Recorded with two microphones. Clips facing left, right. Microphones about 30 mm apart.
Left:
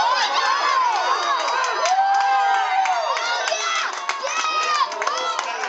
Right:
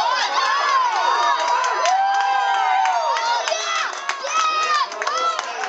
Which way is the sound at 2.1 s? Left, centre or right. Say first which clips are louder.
Left 1 dB; centre.